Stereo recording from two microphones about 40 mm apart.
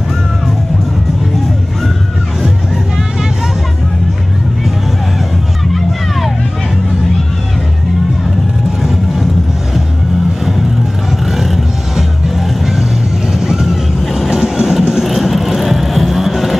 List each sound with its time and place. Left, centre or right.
5.7 s music: centre
8.8 s vehicle: centre
12.4 s music: centre
13.3 s vehicle: centre
14.0 s music: centre
14.3 s music: centre